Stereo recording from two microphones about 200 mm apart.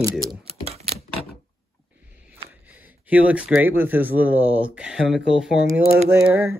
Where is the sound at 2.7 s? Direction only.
10° right (ahead or behind).